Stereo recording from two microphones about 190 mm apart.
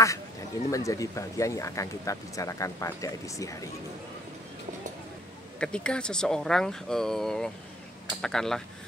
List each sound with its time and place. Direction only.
0.7 s speech: 15° left (ahead or behind)
5.6 s speech: 5° left (ahead or behind)